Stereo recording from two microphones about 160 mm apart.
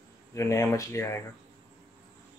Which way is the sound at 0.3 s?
20° left (ahead or behind).